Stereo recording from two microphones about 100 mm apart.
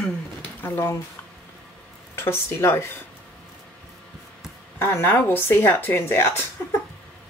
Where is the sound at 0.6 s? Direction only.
25° left (ahead or behind).